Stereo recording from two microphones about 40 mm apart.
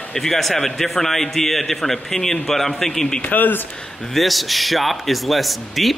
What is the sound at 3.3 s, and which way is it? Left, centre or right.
Speech, left.